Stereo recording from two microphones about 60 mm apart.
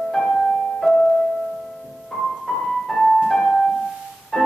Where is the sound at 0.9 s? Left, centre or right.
Centre.